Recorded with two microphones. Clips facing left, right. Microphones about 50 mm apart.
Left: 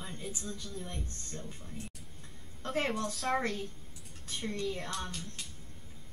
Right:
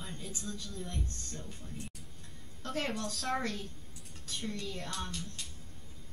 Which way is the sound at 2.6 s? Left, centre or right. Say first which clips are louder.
Left 3 dB; left.